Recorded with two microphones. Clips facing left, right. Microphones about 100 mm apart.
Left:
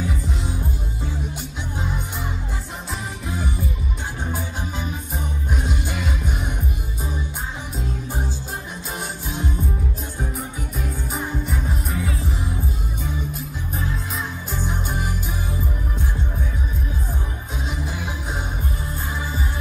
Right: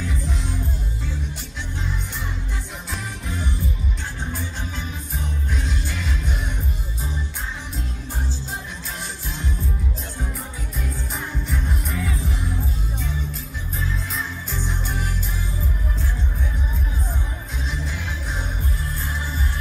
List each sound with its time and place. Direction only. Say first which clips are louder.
0.0 s music: left 2 dB; 5° left (ahead or behind)
3.3 s music: left 2 dB; 5° left (ahead or behind)
6.0 s music: left 2 dB; 50° left (ahead or behind)
11.5 s music: left 1 dB; 5° left (ahead or behind)
14.5 s music: left 5 dB; 50° left (ahead or behind)